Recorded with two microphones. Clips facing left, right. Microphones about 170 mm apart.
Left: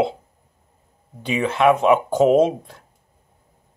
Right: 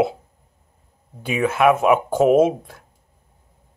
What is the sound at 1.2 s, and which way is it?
Speech, 5° right (ahead or behind).